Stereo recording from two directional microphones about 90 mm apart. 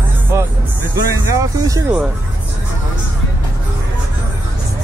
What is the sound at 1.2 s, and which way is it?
Speech, 40° right (ahead or behind).